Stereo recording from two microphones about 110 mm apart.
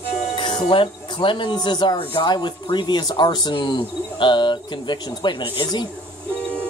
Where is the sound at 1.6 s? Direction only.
40° left (ahead or behind).